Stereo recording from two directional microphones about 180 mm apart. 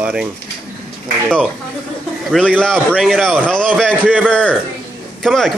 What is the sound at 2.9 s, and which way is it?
A man's voice, centre (ahead or behind).